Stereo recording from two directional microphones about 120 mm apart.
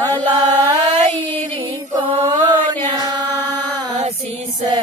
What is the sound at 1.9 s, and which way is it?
Mantra, 30° right (ahead or behind).